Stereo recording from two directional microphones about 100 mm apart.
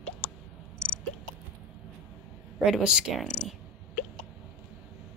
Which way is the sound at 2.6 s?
10° right (ahead or behind).